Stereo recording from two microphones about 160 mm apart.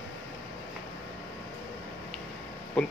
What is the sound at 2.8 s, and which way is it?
Speech, 5° left (ahead or behind).